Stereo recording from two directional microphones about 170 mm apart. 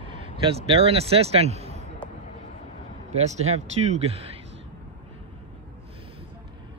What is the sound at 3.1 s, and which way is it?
Speech, 40° right (ahead or behind).